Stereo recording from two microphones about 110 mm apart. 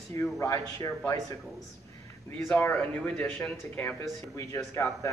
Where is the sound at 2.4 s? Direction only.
15° left (ahead or behind).